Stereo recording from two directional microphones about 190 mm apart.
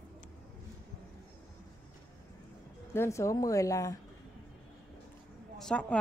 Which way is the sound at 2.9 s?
15° left (ahead or behind).